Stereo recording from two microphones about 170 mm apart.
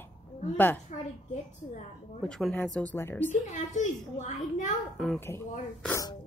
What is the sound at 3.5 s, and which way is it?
A child's voice, 45° left (ahead or behind).